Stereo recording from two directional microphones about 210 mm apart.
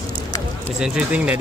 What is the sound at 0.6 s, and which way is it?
Speech, 5° right (ahead or behind).